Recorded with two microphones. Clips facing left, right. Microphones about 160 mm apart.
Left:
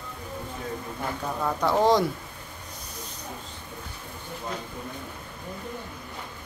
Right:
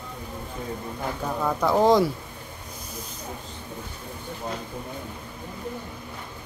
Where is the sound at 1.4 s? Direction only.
5° right (ahead or behind).